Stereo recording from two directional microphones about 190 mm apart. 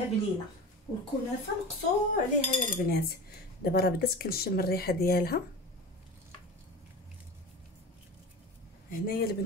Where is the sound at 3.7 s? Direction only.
55° left (ahead or behind).